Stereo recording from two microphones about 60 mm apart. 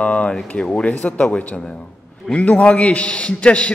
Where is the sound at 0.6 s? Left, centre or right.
Centre.